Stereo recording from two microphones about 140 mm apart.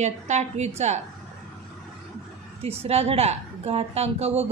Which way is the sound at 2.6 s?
45° right (ahead or behind).